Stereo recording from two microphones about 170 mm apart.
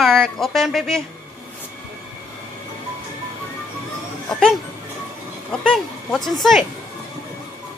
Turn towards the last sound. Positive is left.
turn(degrees=0)  # may be behind; listen again after turning